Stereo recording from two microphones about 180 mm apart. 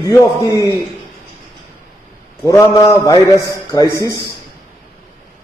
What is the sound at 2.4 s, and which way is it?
A man's voice, 15° left (ahead or behind).